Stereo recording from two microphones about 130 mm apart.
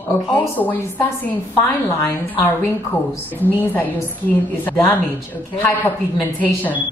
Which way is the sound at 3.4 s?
15° left (ahead or behind).